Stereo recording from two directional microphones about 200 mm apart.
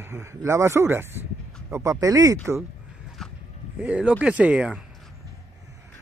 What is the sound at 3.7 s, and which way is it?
Speech, 5° right (ahead or behind).